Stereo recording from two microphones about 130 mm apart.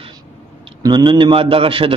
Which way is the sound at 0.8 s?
35° right (ahead or behind).